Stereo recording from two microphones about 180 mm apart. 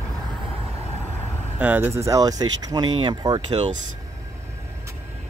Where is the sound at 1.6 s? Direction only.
10° right (ahead or behind).